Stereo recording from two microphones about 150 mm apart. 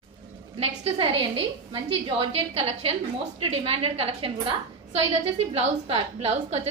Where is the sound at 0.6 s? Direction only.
40° right (ahead or behind).